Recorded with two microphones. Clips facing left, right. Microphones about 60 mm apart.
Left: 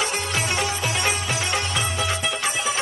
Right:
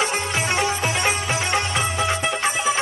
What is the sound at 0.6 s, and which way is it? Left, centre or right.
Music, right.